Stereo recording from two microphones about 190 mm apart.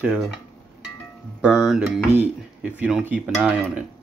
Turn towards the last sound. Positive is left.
turn(degrees=-5)  # may be behind; listen again after turning